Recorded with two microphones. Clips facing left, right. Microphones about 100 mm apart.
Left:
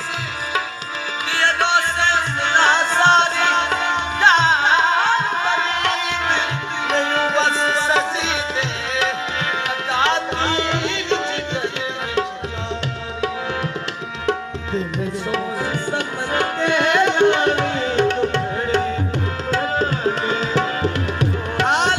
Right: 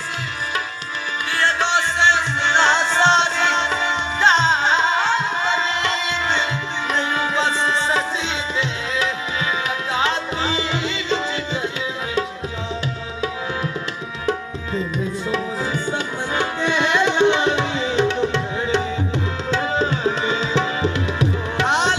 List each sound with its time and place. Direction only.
1.3 s music: 60° left (ahead or behind)
6.9 s tabla: 70° left (ahead or behind)
9.9 s music: 70° left (ahead or behind)
15.9 s tabla: 55° left (ahead or behind)
19.8 s music: 45° left (ahead or behind)